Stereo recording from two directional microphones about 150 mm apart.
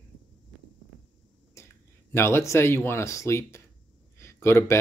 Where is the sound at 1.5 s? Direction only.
15° left (ahead or behind).